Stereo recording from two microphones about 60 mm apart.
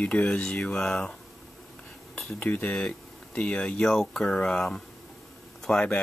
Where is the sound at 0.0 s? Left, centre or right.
Left.